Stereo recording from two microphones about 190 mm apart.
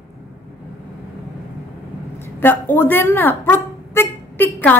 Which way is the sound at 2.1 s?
10° left (ahead or behind).